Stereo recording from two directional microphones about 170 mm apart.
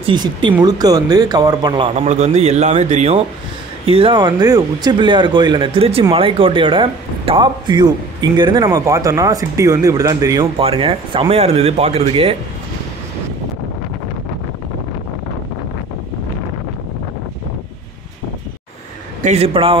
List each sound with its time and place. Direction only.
0.0 s speech: 30° right (ahead or behind)
2.0 s speech: 40° right (ahead or behind)
3.8 s speech: 30° right (ahead or behind)
10.6 s speech: 35° right (ahead or behind)
19.2 s speech: 35° right (ahead or behind)